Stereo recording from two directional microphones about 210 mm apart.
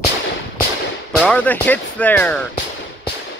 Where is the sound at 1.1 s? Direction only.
5° left (ahead or behind).